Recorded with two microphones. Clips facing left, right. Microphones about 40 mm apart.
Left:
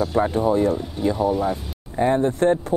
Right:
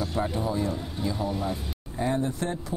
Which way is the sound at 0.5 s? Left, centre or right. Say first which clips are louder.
Left 10 dB; left.